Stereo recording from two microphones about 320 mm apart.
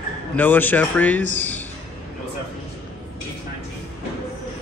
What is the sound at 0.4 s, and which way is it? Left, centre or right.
Speech, centre.